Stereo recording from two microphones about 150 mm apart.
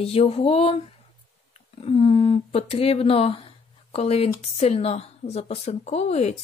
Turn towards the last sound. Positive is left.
turn(degrees=50)  # may be behind; listen again after turning